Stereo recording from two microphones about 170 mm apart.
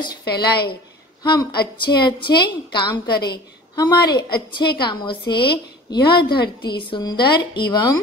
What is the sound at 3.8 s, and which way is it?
A woman's voice, 25° left (ahead or behind).